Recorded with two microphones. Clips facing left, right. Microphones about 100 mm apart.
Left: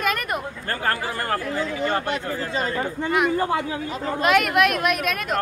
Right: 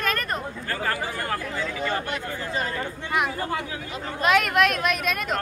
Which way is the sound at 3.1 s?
Centre (ahead or behind).